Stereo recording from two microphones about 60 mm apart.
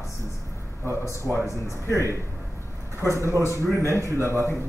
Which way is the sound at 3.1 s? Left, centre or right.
Right.